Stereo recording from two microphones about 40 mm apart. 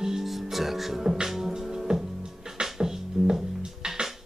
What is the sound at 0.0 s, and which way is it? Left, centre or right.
Music, centre.